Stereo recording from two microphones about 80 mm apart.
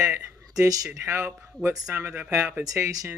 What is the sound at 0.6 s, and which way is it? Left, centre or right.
Speech, right.